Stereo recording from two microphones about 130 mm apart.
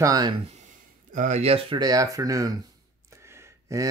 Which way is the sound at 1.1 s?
70° right (ahead or behind).